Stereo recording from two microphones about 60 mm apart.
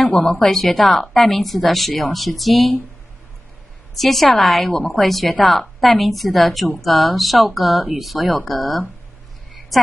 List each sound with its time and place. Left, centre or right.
0.0 s a woman's voice: left
0.4 s a woman's voice: centre
3.9 s a woman's voice: centre